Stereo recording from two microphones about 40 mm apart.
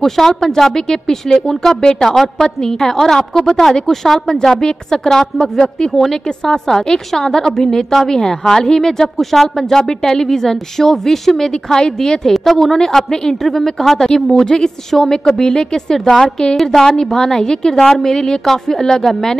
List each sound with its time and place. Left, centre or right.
0.0 s a woman's voice: centre